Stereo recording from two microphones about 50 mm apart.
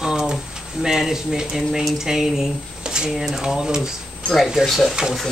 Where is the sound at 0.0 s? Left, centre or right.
Centre.